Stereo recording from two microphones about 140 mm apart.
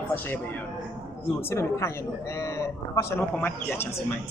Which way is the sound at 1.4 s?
20° left (ahead or behind).